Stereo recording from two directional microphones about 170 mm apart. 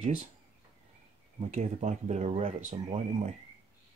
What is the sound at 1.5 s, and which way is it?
Speech, 45° right (ahead or behind).